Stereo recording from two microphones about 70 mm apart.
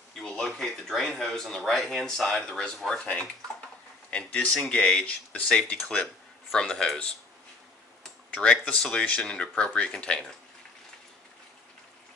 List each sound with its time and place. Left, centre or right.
0.2 s speech: centre
8.3 s speech: centre